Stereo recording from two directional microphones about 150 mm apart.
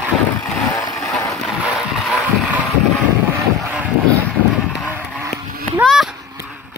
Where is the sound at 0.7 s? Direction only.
25° left (ahead or behind).